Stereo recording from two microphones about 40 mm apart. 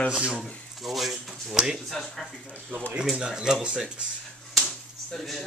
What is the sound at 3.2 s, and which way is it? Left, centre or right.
Speech, centre.